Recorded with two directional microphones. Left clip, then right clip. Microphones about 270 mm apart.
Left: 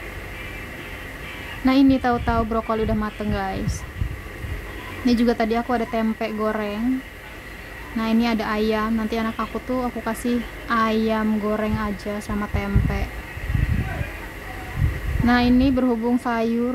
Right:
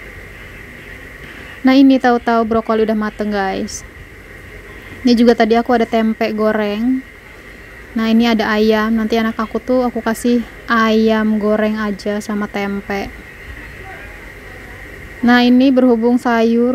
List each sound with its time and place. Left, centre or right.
1.6 s a woman's voice: right
5.0 s a woman's voice: right
8.0 s a woman's voice: right
15.2 s a woman's voice: right